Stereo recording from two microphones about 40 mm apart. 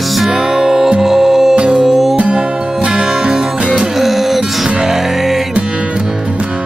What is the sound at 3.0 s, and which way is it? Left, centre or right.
Music, centre.